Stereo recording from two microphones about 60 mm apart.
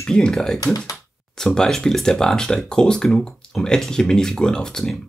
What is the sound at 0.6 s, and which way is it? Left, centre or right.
Speech, left.